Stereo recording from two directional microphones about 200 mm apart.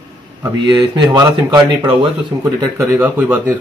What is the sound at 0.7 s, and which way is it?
Speech, 25° right (ahead or behind).